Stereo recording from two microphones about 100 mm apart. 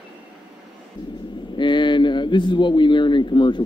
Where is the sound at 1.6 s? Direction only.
50° left (ahead or behind).